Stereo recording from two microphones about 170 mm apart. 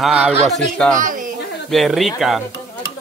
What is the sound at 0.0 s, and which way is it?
Speech, 5° right (ahead or behind).